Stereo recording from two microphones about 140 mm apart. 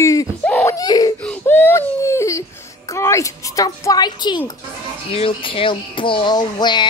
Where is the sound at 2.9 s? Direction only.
20° left (ahead or behind).